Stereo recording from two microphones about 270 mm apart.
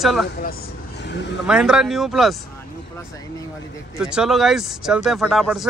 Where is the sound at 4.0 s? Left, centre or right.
Centre.